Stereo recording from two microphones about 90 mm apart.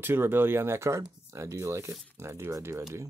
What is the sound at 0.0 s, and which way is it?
Speech, 25° right (ahead or behind).